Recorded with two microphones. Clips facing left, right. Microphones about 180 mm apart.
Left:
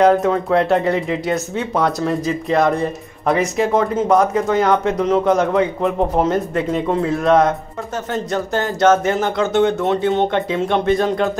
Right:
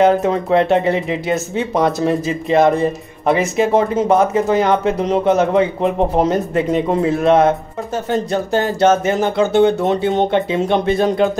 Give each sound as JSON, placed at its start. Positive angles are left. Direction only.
{"t": 0.0, "sound": "speech", "side_deg": -20}
{"t": 7.2, "sound": "speech", "side_deg": -25}
{"t": 9.8, "sound": "speech", "side_deg": -20}